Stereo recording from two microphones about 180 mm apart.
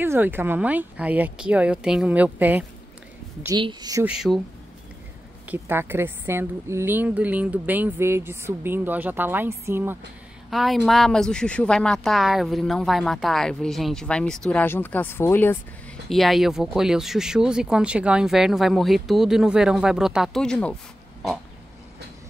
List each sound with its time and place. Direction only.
0.0 s a woman's voice: 10° right (ahead or behind)
3.4 s a woman's voice: 25° right (ahead or behind)
4.0 s speech: 5° right (ahead or behind)
5.5 s a woman's voice: 10° right (ahead or behind)
10.5 s speech: centre (ahead or behind)
16.1 s speech: centre (ahead or behind)